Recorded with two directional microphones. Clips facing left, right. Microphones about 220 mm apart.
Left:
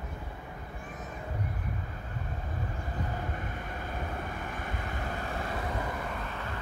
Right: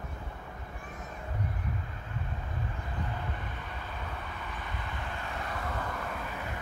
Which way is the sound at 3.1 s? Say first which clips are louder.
Left 2 dB; 45° left (ahead or behind).